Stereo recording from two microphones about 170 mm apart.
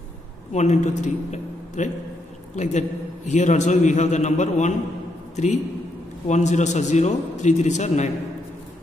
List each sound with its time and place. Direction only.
0.5 s a man's voice: 40° left (ahead or behind)